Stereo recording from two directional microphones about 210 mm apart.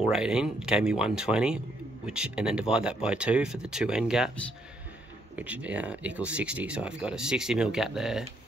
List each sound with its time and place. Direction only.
0.1 s speech: 5° right (ahead or behind)